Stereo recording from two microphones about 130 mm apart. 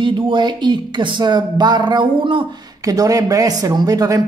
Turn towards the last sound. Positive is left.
turn(degrees=-30)  # may be behind; listen again after turning